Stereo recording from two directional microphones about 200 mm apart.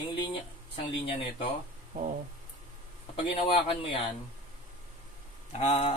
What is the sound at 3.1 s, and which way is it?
Speech, 25° left (ahead or behind).